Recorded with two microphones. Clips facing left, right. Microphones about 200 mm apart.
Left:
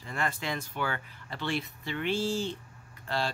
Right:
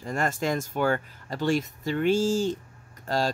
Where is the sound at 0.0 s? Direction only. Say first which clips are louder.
Right 6 dB; 45° right (ahead or behind).